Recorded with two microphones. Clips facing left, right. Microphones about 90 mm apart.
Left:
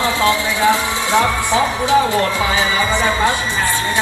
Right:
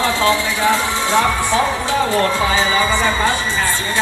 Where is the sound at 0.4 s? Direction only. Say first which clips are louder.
Left 1 dB; 20° left (ahead or behind).